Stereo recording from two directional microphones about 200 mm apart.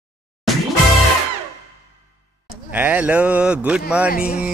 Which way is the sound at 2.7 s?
10° right (ahead or behind).